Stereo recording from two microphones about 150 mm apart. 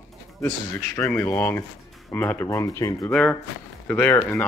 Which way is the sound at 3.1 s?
5° left (ahead or behind).